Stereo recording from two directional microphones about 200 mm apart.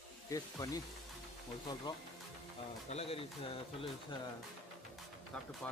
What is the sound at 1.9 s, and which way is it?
Speech, 20° left (ahead or behind).